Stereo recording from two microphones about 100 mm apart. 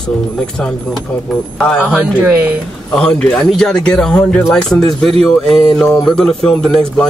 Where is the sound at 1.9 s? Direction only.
15° right (ahead or behind).